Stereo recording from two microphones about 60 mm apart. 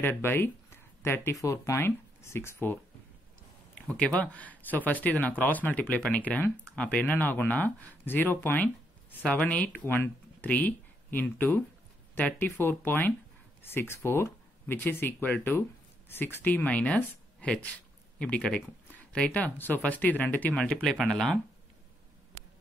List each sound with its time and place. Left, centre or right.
0.0 s speech: left
1.4 s speech: left
3.7 s speech: centre
9.8 s speech: left
20.5 s speech: centre